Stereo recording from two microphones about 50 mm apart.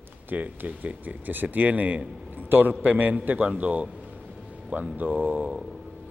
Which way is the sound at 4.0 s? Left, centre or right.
Centre.